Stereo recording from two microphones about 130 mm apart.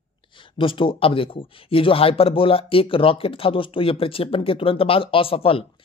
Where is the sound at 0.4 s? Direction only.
40° left (ahead or behind).